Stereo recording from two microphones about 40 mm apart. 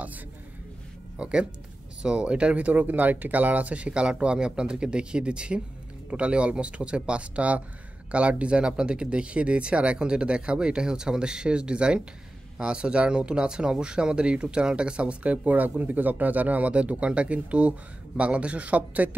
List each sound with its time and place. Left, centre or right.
1.1 s speech: right
2.5 s speech: right